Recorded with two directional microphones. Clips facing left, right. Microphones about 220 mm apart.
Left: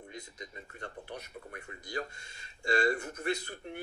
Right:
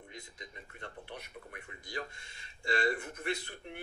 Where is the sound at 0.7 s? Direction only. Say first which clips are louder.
Left 3 dB; 40° left (ahead or behind).